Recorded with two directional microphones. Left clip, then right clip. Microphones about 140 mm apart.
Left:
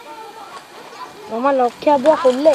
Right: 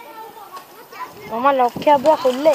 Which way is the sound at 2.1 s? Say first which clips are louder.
Left 2 dB; 10° left (ahead or behind).